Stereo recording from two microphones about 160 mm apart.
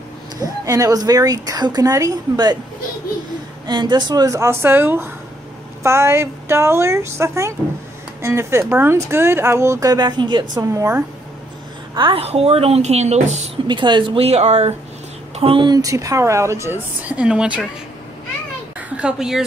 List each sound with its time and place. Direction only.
0.4 s a woman's voice: 20° right (ahead or behind)
3.6 s a woman's voice: 25° right (ahead or behind)
11.9 s speech: 30° right (ahead or behind)
13.7 s a woman's voice: 30° right (ahead or behind); by 17.6 s 5° right (ahead or behind)
18.8 s speech: 5° right (ahead or behind)